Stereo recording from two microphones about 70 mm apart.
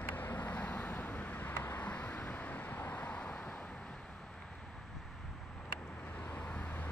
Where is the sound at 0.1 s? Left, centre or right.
Left.